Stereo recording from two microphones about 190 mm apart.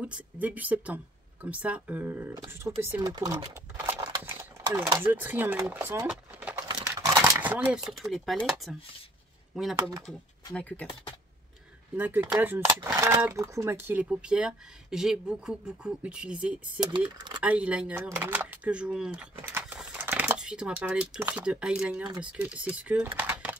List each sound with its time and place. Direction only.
0.0 s speech: 10° right (ahead or behind)
6.7 s a sound: 15° right (ahead or behind)
9.8 s speech: 20° right (ahead or behind)
10.5 s speech: 5° left (ahead or behind)
11.9 s speech: 10° right (ahead or behind)
18.1 s a sound: 10° right (ahead or behind)
20.4 s speech: 5° right (ahead or behind)